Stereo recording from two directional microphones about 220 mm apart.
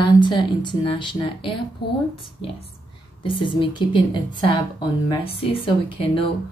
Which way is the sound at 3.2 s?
20° left (ahead or behind).